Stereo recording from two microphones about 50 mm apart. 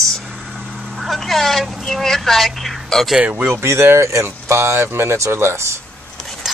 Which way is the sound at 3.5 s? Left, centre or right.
Right.